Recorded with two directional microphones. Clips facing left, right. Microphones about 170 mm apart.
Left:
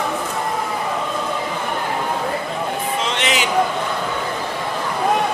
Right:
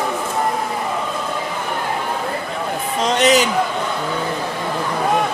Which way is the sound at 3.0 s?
40° right (ahead or behind).